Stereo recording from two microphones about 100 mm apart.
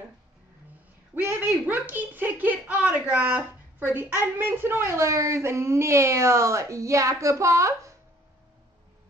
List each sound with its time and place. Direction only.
1.1 s a woman's voice: 20° right (ahead or behind)